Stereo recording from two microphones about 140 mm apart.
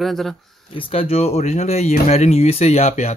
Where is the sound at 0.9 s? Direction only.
45° left (ahead or behind).